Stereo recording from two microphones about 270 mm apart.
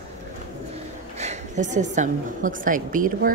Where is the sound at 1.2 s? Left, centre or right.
Right.